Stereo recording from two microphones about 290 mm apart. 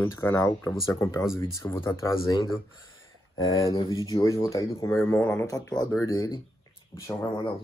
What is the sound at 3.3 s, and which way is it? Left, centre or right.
Speech, centre.